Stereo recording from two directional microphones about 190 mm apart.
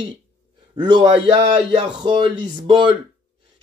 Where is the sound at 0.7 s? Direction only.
25° right (ahead or behind).